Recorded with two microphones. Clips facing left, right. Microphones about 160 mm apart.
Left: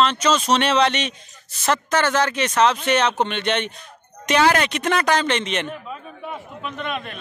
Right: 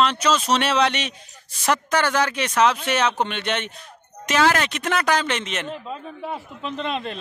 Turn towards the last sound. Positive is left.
turn(degrees=-30)  # may be behind; listen again after turning